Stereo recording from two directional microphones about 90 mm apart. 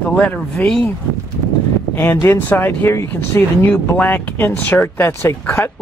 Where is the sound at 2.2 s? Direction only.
25° left (ahead or behind).